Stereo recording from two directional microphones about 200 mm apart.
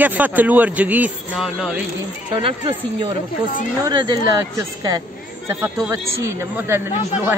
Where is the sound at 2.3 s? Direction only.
25° right (ahead or behind).